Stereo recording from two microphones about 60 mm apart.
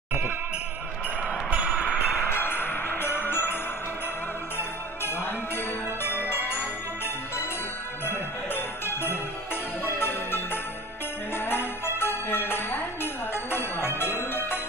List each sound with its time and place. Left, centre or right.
1.5 s a sound: right
2.2 s music: left
4.6 s jingle bell: left
8.0 s music: left
11.3 s jingle bell: left